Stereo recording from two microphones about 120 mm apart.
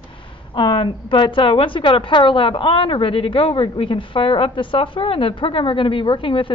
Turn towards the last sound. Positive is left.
turn(degrees=45)  # may be behind; listen again after turning